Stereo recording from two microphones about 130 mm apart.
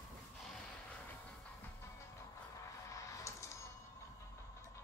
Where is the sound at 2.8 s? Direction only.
25° left (ahead or behind).